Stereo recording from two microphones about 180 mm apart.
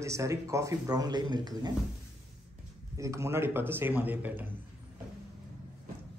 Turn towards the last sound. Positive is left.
turn(degrees=-10)  # may be behind; listen again after turning